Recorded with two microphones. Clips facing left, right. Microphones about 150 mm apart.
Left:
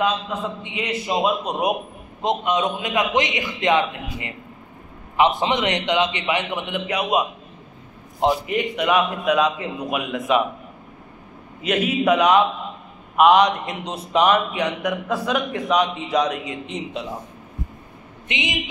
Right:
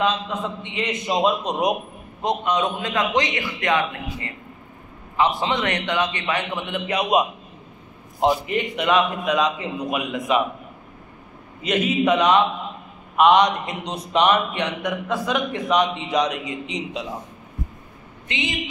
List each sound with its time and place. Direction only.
0.0 s a man's voice: 10° left (ahead or behind)
2.2 s a man's voice: 20° left (ahead or behind)
8.2 s a man's voice: centre (ahead or behind)
11.6 s a man's voice: 5° left (ahead or behind)
18.3 s a man's voice: 20° left (ahead or behind)